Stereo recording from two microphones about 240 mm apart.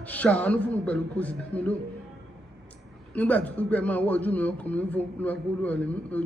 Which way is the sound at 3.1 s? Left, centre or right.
Centre.